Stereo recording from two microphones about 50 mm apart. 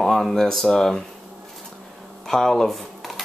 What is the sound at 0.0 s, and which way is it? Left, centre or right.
Speech, centre.